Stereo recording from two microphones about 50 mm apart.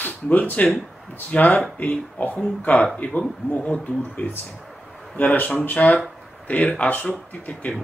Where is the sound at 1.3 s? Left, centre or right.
Left.